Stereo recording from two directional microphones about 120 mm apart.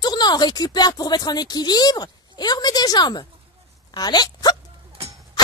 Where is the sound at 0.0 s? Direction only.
35° left (ahead or behind).